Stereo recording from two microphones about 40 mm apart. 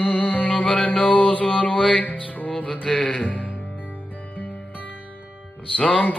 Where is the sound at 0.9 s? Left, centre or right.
Left.